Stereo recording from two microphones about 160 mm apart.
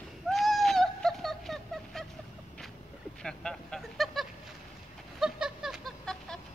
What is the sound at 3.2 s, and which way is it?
Vehicle, 5° left (ahead or behind).